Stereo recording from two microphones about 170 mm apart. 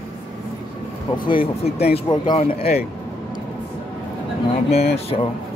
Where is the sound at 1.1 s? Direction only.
30° left (ahead or behind).